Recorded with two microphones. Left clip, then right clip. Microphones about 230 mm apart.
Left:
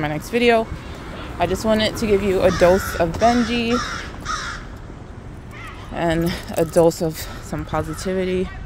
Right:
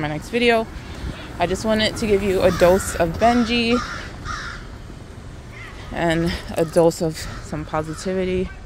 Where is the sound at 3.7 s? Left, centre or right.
Left.